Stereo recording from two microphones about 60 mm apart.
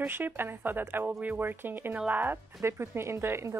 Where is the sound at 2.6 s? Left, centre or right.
Right.